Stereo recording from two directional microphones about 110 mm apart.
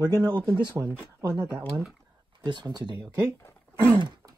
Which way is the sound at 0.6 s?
35° right (ahead or behind).